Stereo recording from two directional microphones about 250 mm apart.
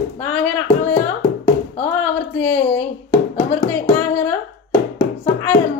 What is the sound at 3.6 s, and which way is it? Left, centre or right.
Singing, centre.